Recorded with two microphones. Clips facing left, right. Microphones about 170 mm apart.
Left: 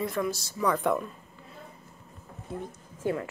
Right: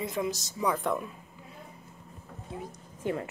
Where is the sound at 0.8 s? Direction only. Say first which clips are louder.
Left 3 dB; centre (ahead or behind).